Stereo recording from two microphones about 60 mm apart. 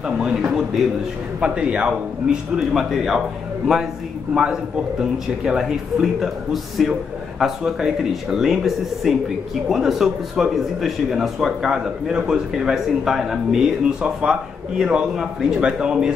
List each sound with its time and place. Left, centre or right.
0.2 s speech: centre
4.3 s speech: centre